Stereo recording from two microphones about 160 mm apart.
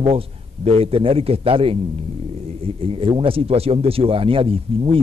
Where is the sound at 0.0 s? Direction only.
35° right (ahead or behind).